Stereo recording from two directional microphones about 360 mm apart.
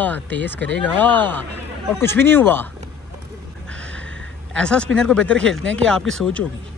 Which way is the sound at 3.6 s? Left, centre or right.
Centre.